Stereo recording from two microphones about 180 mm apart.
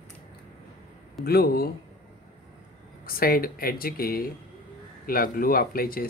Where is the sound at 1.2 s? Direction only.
60° left (ahead or behind).